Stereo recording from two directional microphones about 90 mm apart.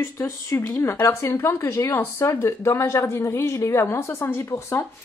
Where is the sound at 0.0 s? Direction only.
30° left (ahead or behind).